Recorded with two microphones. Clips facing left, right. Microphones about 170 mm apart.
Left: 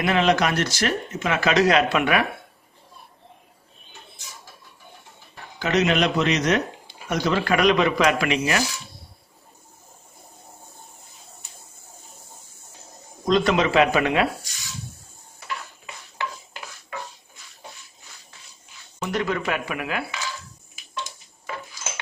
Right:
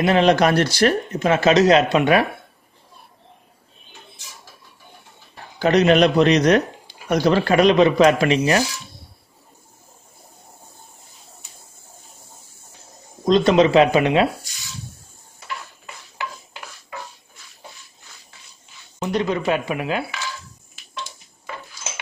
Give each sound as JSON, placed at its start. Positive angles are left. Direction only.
{"t": 0.0, "sound": "speech", "side_deg": -35}
{"t": 5.6, "sound": "speech", "side_deg": -35}
{"t": 13.2, "sound": "speech", "side_deg": -25}
{"t": 18.9, "sound": "speech", "side_deg": -20}